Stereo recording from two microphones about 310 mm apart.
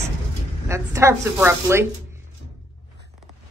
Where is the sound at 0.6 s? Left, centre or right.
Centre.